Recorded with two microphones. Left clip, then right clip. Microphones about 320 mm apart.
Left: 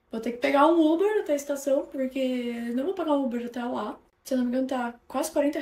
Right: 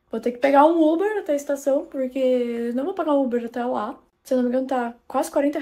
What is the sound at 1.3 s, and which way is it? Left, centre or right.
A woman's voice, centre.